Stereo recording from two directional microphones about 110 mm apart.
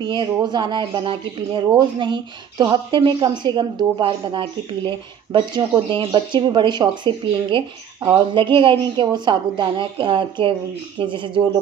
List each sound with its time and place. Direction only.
0.0 s speech: 45° right (ahead or behind)